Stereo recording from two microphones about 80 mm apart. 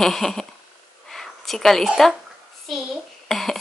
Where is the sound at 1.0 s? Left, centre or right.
Centre.